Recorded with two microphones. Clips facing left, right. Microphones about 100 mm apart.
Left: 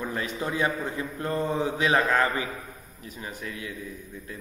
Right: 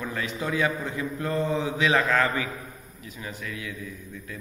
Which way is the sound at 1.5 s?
45° left (ahead or behind).